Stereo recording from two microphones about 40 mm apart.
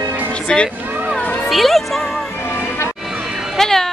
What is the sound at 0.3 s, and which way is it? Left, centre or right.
Music, left.